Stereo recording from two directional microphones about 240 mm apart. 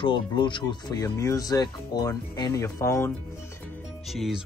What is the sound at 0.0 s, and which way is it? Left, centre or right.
Speech, centre.